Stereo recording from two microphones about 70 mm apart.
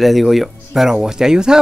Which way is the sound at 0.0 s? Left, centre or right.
Centre.